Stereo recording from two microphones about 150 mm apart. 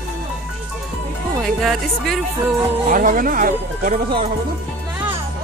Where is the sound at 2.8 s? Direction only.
65° right (ahead or behind).